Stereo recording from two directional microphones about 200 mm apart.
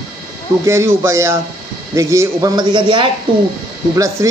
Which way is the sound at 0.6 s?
15° right (ahead or behind).